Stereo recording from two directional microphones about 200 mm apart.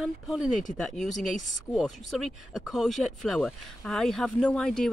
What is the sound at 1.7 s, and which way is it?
Speech, centre (ahead or behind).